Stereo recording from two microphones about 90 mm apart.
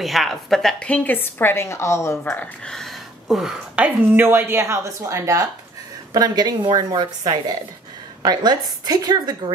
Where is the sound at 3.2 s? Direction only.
5° right (ahead or behind).